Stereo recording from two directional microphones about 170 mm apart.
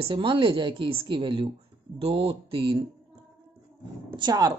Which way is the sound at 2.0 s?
35° right (ahead or behind).